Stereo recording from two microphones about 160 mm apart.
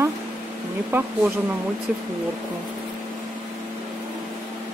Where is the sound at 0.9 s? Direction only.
15° right (ahead or behind).